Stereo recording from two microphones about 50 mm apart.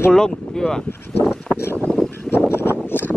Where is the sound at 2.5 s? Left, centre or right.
Left.